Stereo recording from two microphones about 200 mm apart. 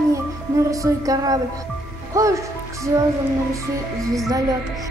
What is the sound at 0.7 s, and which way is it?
Music, 15° right (ahead or behind).